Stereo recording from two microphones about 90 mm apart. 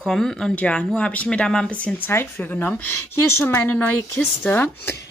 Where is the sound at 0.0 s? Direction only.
5° left (ahead or behind); by 4.9 s 20° left (ahead or behind).